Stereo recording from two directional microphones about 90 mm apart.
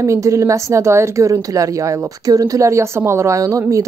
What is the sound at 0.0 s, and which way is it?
Speech, 35° right (ahead or behind).